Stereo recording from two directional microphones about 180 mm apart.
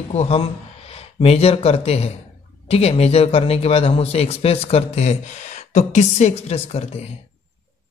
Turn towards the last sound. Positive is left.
turn(degrees=35)  # may be behind; listen again after turning